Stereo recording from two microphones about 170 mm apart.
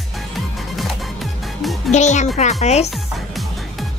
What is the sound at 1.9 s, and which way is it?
A child's voice, 45° left (ahead or behind).